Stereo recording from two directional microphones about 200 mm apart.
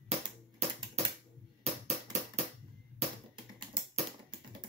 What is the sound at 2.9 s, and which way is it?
Music, 25° right (ahead or behind).